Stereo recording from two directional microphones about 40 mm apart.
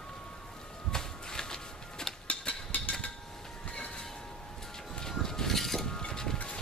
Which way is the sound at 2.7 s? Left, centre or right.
Left.